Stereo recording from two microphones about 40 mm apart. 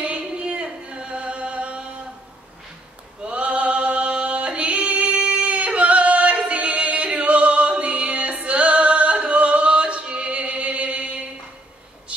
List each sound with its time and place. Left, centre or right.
0.0 s music: right
3.2 s music: right